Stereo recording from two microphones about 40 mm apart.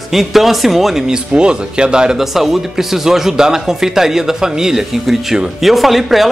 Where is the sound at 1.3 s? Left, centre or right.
Right.